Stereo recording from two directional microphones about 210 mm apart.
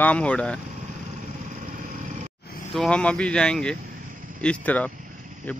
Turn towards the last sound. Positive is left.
turn(degrees=5)  # may be behind; listen again after turning